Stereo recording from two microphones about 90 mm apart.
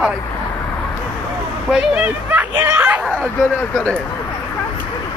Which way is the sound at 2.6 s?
20° right (ahead or behind).